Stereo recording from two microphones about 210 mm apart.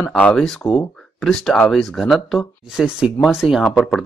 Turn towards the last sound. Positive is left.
turn(degrees=0)  # may be behind; listen again after turning